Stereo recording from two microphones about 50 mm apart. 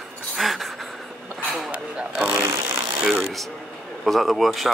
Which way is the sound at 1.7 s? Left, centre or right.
Right.